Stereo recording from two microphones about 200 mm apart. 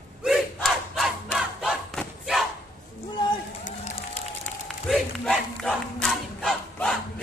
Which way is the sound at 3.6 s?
35° left (ahead or behind).